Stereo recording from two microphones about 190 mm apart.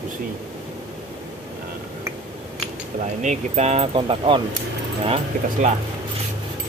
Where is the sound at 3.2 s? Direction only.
35° right (ahead or behind).